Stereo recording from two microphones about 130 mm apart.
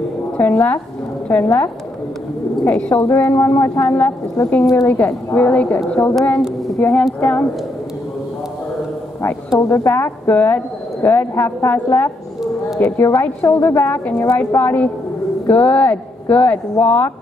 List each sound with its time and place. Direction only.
0.4 s speech: 15° left (ahead or behind)
6.0 s a woman's voice: 20° left (ahead or behind)
9.2 s a woman's voice: 20° left (ahead or behind)